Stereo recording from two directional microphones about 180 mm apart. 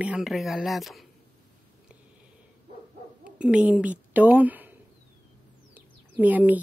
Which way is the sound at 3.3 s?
5° right (ahead or behind).